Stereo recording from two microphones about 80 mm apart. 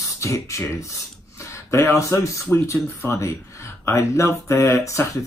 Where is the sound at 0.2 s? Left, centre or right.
Left.